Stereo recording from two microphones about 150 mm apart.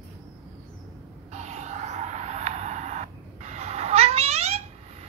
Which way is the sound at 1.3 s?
50° right (ahead or behind).